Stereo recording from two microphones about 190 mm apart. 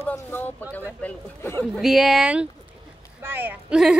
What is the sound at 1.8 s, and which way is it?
A woman's voice, centre (ahead or behind).